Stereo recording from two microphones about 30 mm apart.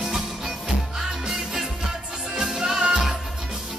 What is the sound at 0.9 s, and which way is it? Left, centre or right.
Music, centre.